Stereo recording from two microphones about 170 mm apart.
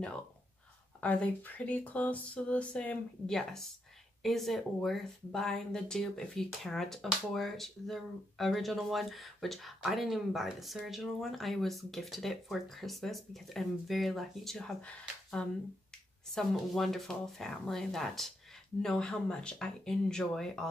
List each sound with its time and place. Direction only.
1.0 s speech: 5° left (ahead or behind)